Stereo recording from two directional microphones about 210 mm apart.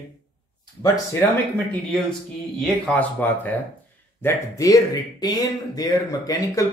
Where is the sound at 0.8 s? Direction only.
15° left (ahead or behind).